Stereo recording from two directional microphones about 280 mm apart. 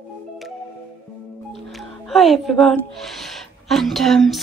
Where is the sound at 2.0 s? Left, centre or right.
Centre.